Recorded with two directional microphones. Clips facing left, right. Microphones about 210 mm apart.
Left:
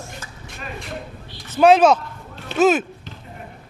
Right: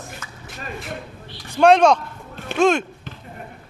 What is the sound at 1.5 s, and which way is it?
Speech, 5° left (ahead or behind).